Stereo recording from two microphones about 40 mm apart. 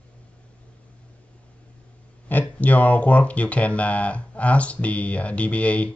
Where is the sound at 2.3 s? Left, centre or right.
Left.